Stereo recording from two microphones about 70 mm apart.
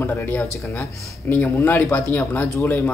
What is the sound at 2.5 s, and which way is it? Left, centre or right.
Speech, left.